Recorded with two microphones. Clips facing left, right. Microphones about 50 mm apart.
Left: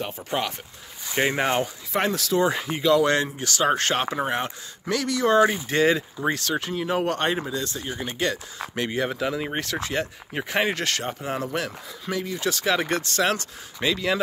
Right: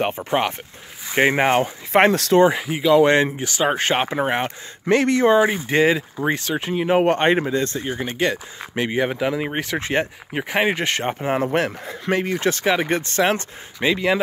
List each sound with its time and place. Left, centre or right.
0.2 s speech: right
2.5 s speech: centre
3.0 s speech: right
3.3 s speech: right
4.0 s speech: right
5.3 s speech: centre
9.8 s speech: right
10.3 s speech: centre; by 12.6 s right
12.6 s speech: right